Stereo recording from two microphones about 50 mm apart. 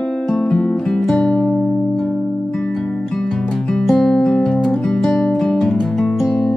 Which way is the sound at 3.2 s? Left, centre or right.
Centre.